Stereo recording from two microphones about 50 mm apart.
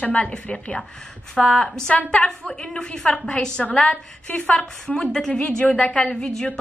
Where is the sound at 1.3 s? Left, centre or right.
Centre.